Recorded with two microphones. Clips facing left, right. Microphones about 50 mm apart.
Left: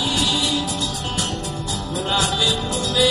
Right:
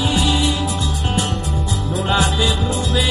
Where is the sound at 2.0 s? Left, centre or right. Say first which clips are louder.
Right 3 dB; right.